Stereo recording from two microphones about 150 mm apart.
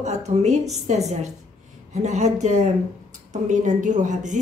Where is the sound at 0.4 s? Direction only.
50° right (ahead or behind).